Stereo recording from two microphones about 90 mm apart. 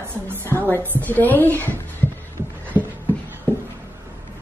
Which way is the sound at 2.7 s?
20° right (ahead or behind).